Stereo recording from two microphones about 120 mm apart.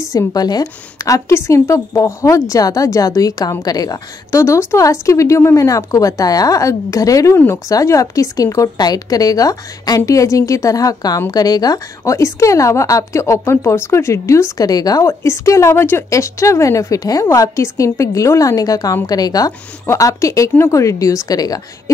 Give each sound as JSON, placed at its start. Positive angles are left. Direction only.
{"t": 0.0, "sound": "a woman's voice", "side_deg": 30}